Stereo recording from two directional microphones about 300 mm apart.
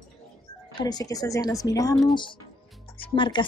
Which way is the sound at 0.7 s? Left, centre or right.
Centre.